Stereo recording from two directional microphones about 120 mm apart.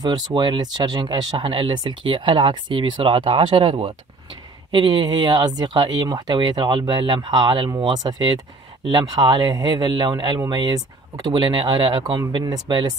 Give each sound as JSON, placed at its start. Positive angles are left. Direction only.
{"t": 0.0, "sound": "speech", "side_deg": -40}